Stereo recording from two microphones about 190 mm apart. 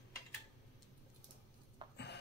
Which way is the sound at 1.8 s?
25° right (ahead or behind).